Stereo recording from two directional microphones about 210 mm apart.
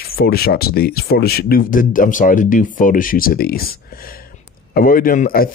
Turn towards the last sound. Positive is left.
turn(degrees=40)  # may be behind; listen again after turning